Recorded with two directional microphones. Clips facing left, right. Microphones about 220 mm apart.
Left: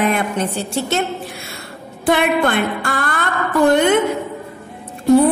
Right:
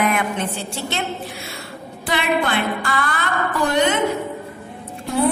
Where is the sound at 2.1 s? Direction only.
50° left (ahead or behind).